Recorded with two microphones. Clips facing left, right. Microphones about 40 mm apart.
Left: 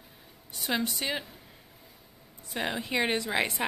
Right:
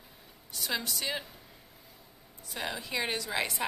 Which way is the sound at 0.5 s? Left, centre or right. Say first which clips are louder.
Left 4 dB; left.